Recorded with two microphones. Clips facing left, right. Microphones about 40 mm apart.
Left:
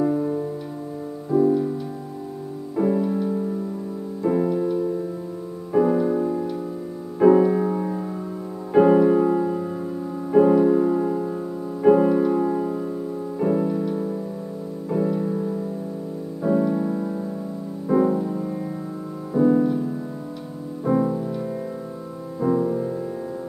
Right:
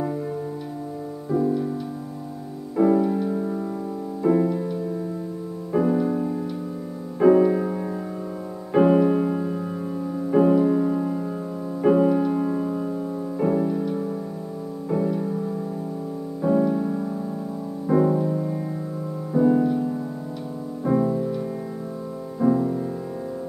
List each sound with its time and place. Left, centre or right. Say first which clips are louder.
0.0 s music: left 6 dB; centre
1.3 s music: left 4 dB; centre
2.8 s music: right 3 dB; centre
4.2 s music: even; centre
14.9 s music: left 1 dB; centre
16.3 s music: even; centre
20.8 s music: even; centre